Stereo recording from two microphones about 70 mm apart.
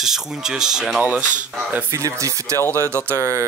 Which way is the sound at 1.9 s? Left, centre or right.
Right.